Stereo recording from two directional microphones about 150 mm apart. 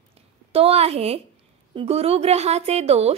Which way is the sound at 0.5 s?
40° right (ahead or behind).